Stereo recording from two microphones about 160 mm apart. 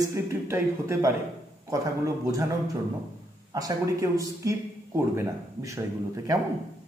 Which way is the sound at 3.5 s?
20° right (ahead or behind).